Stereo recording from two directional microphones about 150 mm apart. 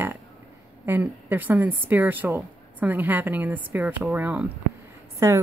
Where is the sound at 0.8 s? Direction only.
15° right (ahead or behind).